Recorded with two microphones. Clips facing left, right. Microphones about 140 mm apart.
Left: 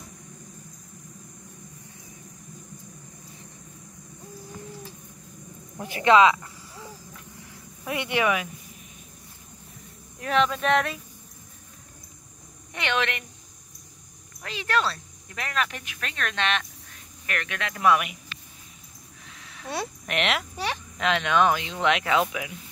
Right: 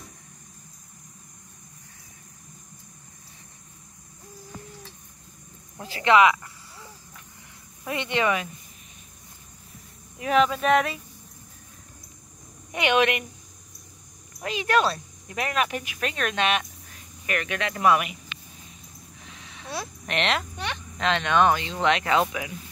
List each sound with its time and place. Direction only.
5.8 s cricket: 20° left (ahead or behind)
7.8 s speech: 10° left (ahead or behind)
10.1 s speech: 5° right (ahead or behind)
12.7 s speech: 15° right (ahead or behind)
14.4 s speech: 15° right (ahead or behind)
19.4 s a sound: centre (ahead or behind)
21.0 s speech: 5° left (ahead or behind)